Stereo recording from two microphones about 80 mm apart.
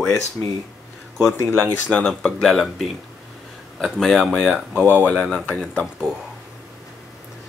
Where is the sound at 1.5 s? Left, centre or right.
Centre.